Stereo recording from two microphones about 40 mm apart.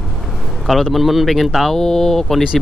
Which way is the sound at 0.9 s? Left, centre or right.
Centre.